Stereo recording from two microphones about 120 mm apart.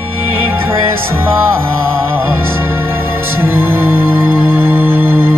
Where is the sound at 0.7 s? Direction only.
20° right (ahead or behind).